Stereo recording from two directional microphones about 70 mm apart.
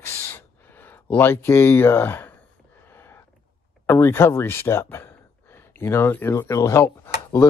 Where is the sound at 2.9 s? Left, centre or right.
Left.